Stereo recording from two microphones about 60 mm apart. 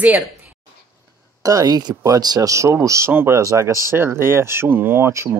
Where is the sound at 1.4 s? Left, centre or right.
Right.